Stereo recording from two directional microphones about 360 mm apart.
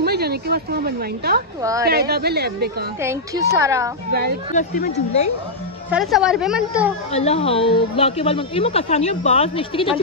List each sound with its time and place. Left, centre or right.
0.0 s speech: right
1.6 s a child's voice: centre
1.9 s a woman's voice: right
3.0 s a child's voice: centre
4.1 s a woman's voice: right
4.5 s speech: left
5.9 s a woman's voice: centre
7.1 s speech: centre